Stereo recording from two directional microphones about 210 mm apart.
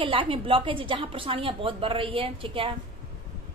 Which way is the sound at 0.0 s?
25° right (ahead or behind).